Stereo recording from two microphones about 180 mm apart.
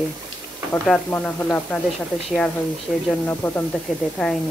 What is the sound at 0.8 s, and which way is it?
Speech, 5° left (ahead or behind).